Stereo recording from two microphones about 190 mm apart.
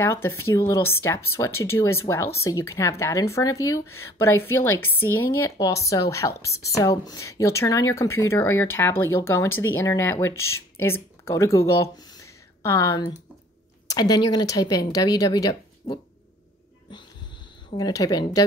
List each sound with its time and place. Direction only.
0.0 s speech: 10° left (ahead or behind)
17.7 s speech: 20° left (ahead or behind)